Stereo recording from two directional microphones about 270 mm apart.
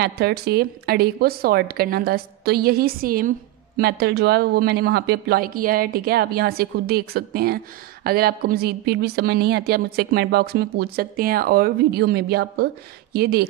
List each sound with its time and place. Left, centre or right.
0.0 s a woman's voice: right